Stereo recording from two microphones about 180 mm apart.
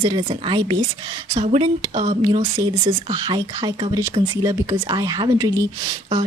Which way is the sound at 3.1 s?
25° right (ahead or behind).